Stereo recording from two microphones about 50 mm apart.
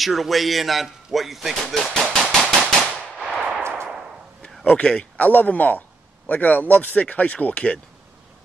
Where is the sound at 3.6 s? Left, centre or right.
Right.